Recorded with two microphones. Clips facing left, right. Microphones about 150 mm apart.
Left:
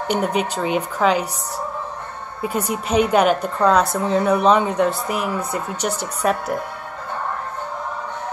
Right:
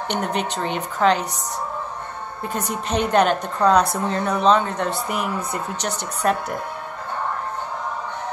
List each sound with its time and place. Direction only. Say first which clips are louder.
0.1 s a woman's voice: left 4 dB; 5° left (ahead or behind)
2.4 s a woman's voice: left 4 dB; 10° left (ahead or behind)